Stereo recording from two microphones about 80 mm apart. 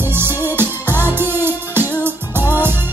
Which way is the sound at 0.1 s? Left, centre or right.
Right.